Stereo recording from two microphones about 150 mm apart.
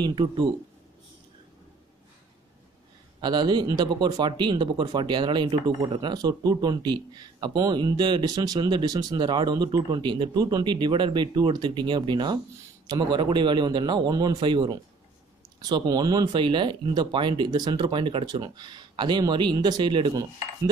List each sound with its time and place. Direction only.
0.0 s speech: 30° right (ahead or behind)
3.2 s speech: 30° right (ahead or behind)